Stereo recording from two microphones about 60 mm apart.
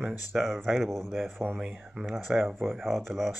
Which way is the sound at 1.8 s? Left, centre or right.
Centre.